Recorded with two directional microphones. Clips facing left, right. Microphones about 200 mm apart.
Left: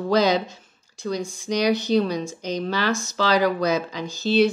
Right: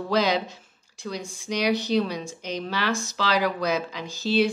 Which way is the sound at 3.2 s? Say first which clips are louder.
Left 5 dB; 5° right (ahead or behind).